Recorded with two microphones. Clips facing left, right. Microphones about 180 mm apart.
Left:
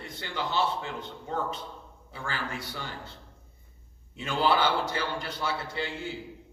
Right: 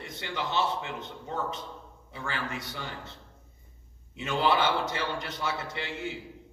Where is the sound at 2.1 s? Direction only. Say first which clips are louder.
Even; 20° right (ahead or behind).